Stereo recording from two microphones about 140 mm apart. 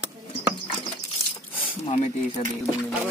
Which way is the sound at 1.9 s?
45° left (ahead or behind).